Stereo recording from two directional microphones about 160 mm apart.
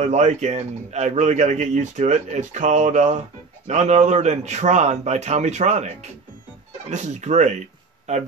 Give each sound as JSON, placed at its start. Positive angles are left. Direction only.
{"t": 0.0, "sound": "a man's voice", "side_deg": -45}